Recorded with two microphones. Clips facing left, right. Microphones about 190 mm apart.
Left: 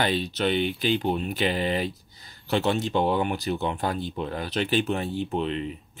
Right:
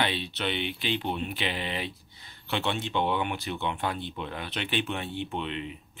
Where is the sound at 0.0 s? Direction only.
40° left (ahead or behind).